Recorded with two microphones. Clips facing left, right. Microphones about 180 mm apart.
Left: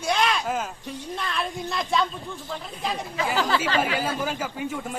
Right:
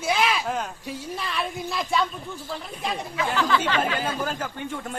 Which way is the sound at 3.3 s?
35° left (ahead or behind).